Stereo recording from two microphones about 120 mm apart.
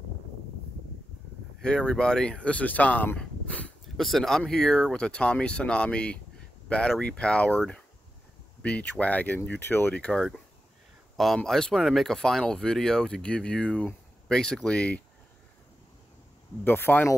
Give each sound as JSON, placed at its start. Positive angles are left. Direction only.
{"t": 1.6, "sound": "speech", "side_deg": 5}
{"t": 3.9, "sound": "speech", "side_deg": 0}
{"t": 16.6, "sound": "speech", "side_deg": 15}